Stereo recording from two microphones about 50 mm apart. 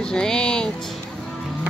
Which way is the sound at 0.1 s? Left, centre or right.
Centre.